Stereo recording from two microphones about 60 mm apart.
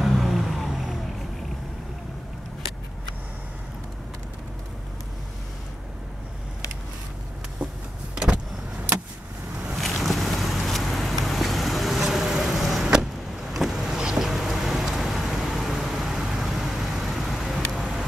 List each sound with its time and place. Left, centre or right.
0.0 s vehicle: centre
8.1 s vehicle: centre
9.8 s vehicle: centre